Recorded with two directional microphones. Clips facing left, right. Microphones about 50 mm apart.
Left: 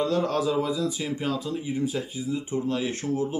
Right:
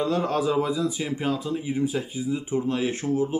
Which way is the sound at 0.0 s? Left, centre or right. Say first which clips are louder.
Even; centre.